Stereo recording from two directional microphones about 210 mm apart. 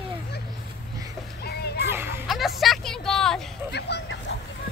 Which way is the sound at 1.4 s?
50° left (ahead or behind).